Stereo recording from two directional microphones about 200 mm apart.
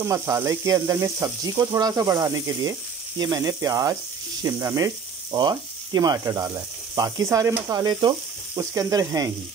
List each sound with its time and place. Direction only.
0.0 s speech: 15° right (ahead or behind)